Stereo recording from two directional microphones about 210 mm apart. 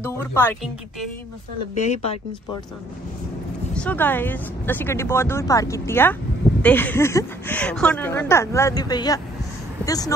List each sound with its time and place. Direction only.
0.0 s a woman's voice: 10° left (ahead or behind)
1.8 s speech: 30° left (ahead or behind)
3.7 s a woman's voice: 5° left (ahead or behind)